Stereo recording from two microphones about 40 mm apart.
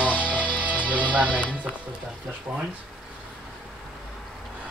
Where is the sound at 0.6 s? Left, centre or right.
Right.